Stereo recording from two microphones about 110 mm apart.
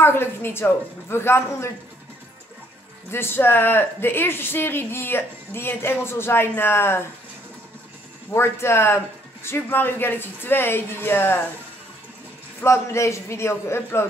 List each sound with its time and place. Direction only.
0.0 s speech: 20° left (ahead or behind)
3.1 s speech: 20° left (ahead or behind)
8.3 s speech: 20° left (ahead or behind)
12.6 s speech: 25° left (ahead or behind)